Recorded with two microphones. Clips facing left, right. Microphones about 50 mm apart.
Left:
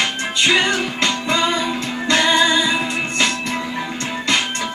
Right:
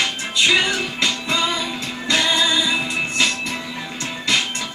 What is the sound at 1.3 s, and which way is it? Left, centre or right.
Music, left.